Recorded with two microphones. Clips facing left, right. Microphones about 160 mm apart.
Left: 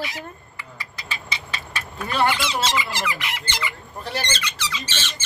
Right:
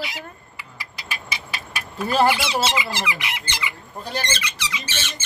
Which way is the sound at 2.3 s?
10° right (ahead or behind).